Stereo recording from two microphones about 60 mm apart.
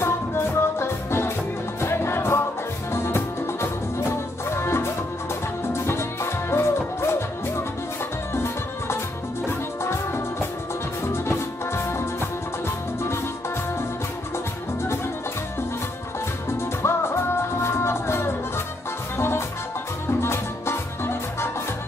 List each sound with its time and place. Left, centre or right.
0.0 s music: left
16.4 s music: left